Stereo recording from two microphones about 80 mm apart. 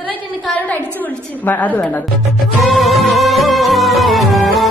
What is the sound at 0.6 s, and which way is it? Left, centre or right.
A woman's voice, left.